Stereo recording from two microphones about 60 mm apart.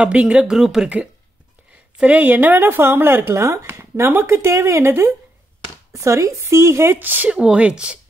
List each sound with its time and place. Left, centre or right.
0.0 s speech: centre
0.6 s speech: centre
2.0 s a woman's voice: right
3.3 s speech: right
5.9 s speech: right
7.0 s a woman's voice: right
7.2 s speech: centre